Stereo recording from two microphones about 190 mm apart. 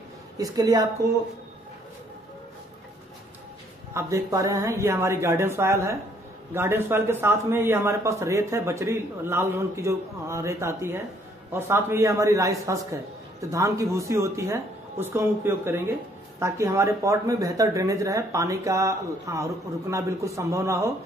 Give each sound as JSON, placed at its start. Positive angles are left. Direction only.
{"t": 0.4, "sound": "a woman's voice", "side_deg": -20}
{"t": 3.9, "sound": "speech", "side_deg": -15}